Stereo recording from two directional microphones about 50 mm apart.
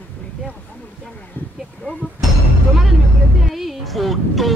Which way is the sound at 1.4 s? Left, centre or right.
Left.